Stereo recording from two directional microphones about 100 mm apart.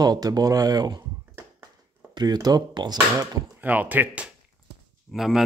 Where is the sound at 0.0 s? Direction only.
40° right (ahead or behind).